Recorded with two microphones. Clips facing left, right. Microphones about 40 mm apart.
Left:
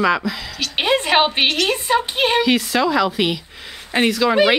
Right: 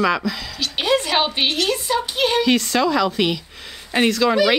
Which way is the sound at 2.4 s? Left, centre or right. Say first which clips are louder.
Left 1 dB; centre.